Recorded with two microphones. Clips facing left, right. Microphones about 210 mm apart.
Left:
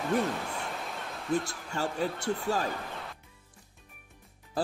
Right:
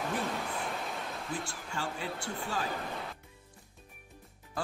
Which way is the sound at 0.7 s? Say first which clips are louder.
Right 1 dB; centre (ahead or behind).